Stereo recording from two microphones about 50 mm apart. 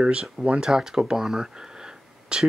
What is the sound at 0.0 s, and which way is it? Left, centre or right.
Speech, right.